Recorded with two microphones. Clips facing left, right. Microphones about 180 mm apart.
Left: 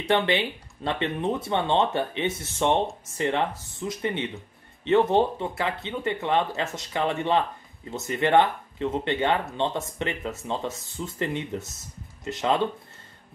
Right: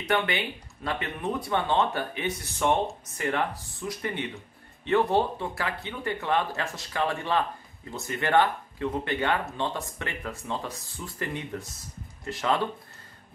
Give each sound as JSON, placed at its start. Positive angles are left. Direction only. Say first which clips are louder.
{"t": 0.0, "sound": "speech", "louder": "left 4 dB", "side_deg": 30}